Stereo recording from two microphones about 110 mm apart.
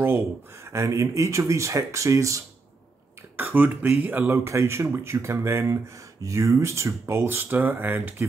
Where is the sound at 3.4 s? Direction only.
15° right (ahead or behind).